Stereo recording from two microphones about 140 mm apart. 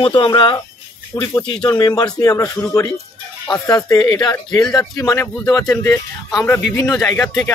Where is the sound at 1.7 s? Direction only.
25° left (ahead or behind).